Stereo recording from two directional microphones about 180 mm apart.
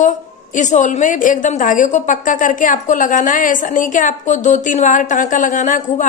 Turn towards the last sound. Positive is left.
turn(degrees=45)  # may be behind; listen again after turning